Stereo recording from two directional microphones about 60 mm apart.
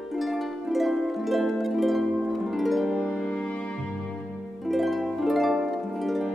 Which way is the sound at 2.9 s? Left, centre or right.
Centre.